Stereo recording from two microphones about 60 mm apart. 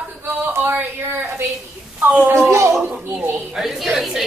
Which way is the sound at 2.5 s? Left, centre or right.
Right.